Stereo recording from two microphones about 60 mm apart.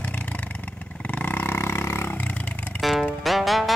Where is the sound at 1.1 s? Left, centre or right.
Left.